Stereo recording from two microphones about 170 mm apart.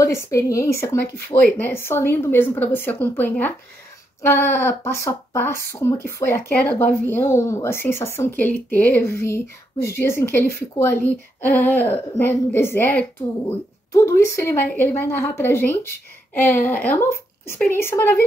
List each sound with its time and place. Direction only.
0.0 s speech: 15° left (ahead or behind)